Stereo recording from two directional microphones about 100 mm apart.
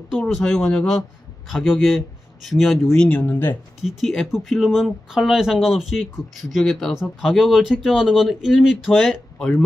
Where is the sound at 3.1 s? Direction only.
20° left (ahead or behind).